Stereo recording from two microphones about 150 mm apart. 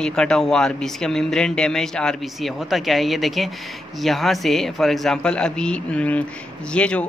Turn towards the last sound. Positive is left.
turn(degrees=5)  # may be behind; listen again after turning